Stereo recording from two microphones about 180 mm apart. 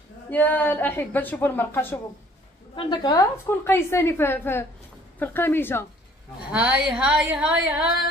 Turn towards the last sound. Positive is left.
turn(degrees=-5)  # may be behind; listen again after turning